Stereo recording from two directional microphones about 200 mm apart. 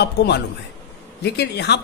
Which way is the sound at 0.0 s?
55° left (ahead or behind).